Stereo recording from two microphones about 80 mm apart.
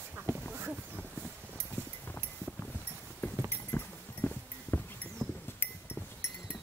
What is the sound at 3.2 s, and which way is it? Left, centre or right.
Clip-clop, left.